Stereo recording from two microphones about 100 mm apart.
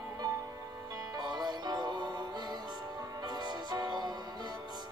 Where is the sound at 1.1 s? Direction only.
45° right (ahead or behind).